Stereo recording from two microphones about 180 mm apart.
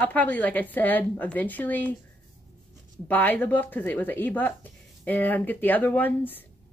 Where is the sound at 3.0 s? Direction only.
10° left (ahead or behind).